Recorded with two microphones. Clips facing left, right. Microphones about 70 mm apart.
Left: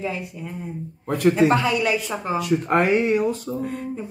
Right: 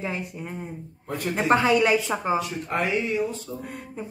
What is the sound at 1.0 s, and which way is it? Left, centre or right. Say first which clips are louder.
Speech: left 11 dB; left.